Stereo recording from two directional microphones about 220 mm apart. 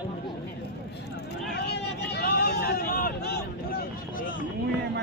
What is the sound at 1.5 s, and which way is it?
Vehicle, 50° left (ahead or behind).